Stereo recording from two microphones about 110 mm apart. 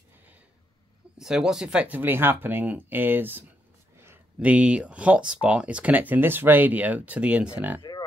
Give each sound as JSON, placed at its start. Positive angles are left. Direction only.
{"t": 1.1, "sound": "speech", "side_deg": -5}
{"t": 3.9, "sound": "a sound", "side_deg": -20}
{"t": 4.4, "sound": "speech", "side_deg": -10}